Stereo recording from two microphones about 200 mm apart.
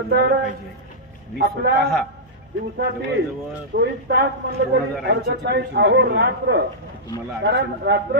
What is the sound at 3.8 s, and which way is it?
A man's voice, 55° right (ahead or behind).